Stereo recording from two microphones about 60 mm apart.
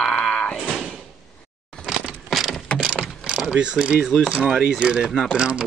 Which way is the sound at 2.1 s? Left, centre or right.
Centre.